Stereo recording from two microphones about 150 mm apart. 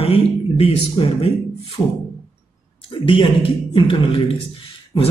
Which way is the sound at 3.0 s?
35° left (ahead or behind).